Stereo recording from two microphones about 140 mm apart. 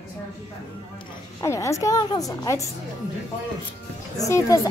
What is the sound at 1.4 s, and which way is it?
A woman's voice, 20° left (ahead or behind).